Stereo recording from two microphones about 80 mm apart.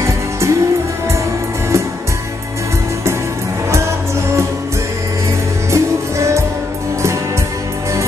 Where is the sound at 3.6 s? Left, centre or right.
Right.